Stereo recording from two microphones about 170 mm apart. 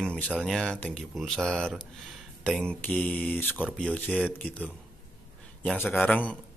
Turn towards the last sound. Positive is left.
turn(degrees=10)  # may be behind; listen again after turning